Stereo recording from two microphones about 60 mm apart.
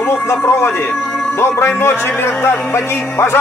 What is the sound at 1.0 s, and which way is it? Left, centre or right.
Speech, centre.